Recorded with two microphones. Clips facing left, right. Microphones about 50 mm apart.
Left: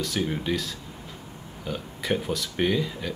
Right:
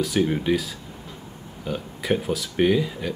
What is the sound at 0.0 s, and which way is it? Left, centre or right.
Speech, centre.